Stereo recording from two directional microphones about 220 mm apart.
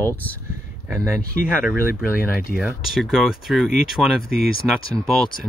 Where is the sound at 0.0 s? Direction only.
10° left (ahead or behind).